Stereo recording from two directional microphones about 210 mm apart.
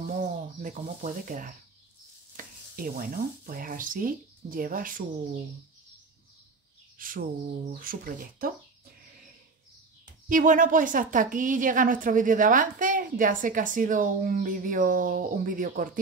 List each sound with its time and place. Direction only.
0.2 s speech: 40° right (ahead or behind)
7.0 s bird: 40° right (ahead or behind)
7.7 s speech: 40° right (ahead or behind)
10.2 s speech: 40° right (ahead or behind)